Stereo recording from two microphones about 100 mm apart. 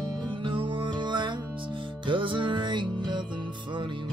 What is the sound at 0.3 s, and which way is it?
Music, 60° right (ahead or behind).